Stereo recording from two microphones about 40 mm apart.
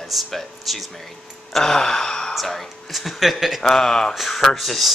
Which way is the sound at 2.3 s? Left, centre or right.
Centre.